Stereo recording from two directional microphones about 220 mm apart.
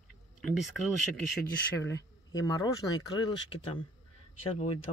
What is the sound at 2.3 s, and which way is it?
Speech, 15° left (ahead or behind).